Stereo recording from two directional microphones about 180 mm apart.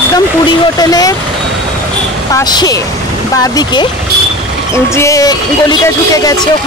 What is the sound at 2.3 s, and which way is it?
Speech, 20° left (ahead or behind).